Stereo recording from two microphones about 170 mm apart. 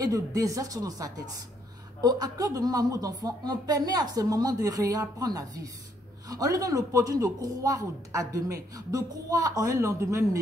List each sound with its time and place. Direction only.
0.0 s speech: 20° right (ahead or behind)